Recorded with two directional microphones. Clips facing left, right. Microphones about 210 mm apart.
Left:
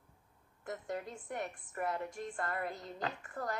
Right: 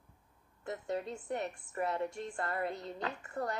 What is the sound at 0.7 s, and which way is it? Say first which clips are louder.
A woman's voice: right 3 dB; 25° right (ahead or behind).